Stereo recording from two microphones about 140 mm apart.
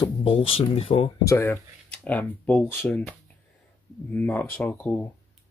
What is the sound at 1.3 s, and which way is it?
Speech, 20° left (ahead or behind).